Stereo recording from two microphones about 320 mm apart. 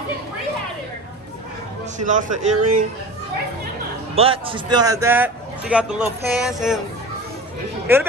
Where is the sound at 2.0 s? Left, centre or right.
Right.